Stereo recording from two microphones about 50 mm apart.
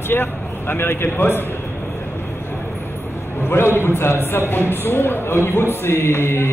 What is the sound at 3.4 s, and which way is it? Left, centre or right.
A man's voice, left.